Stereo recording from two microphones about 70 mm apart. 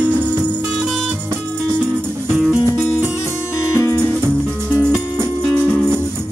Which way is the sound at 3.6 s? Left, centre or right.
Left.